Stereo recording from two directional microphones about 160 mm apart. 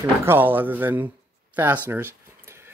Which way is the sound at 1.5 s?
10° right (ahead or behind).